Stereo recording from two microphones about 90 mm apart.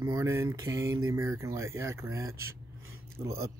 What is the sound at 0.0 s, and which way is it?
Speech, 40° right (ahead or behind).